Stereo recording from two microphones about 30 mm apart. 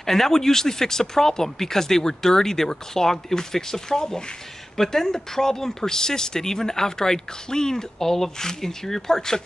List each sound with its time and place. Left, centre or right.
0.0 s speech: centre